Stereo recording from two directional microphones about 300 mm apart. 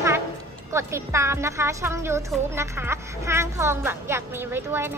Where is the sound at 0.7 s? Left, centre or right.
Centre.